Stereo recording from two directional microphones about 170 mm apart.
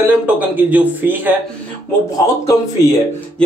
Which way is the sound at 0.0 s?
10° right (ahead or behind).